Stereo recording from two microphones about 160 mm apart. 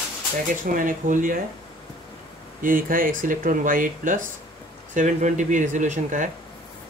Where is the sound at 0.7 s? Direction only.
55° right (ahead or behind).